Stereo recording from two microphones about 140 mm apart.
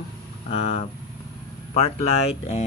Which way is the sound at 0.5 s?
50° left (ahead or behind).